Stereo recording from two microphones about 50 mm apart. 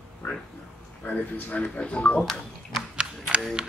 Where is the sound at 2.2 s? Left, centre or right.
Centre.